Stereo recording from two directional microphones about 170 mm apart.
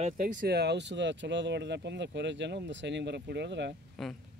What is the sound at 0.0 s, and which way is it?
Speech, 50° right (ahead or behind).